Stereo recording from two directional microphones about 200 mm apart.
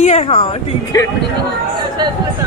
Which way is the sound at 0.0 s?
35° left (ahead or behind).